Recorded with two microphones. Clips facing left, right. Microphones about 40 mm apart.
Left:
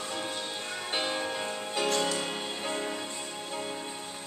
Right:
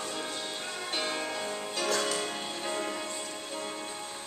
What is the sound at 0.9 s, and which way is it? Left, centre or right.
Music, centre.